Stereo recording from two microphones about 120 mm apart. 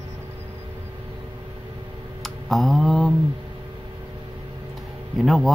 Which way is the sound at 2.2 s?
Centre (ahead or behind).